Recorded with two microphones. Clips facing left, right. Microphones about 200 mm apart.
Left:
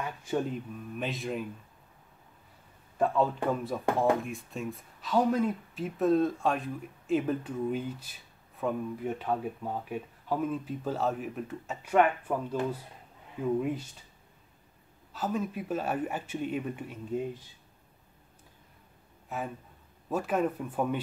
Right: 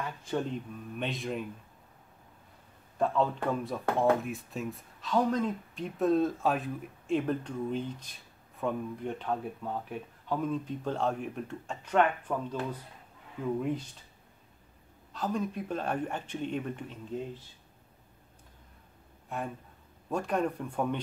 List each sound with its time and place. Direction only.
0.0 s speech: 10° left (ahead or behind)
3.0 s speech: 10° left (ahead or behind)
15.1 s speech: 5° left (ahead or behind)
19.2 s a sound: centre (ahead or behind)
20.1 s speech: 5° left (ahead or behind)